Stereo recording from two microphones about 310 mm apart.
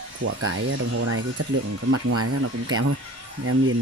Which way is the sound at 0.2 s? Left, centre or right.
Right.